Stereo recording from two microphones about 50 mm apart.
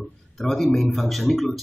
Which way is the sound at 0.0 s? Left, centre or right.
Centre.